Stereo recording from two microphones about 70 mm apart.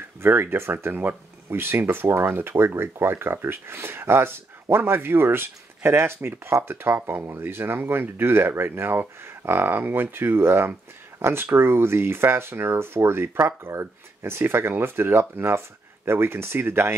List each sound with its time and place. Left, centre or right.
0.2 s speech: right